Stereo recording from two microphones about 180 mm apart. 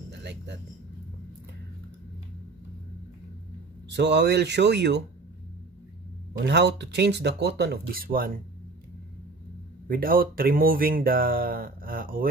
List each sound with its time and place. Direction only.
0.1 s speech: 70° right (ahead or behind)
3.9 s speech: 75° right (ahead or behind)
6.4 s speech: 75° right (ahead or behind); by 8.3 s 55° right (ahead or behind)
9.8 s speech: 55° right (ahead or behind)